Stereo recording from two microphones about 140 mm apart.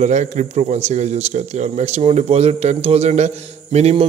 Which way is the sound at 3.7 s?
50° right (ahead or behind).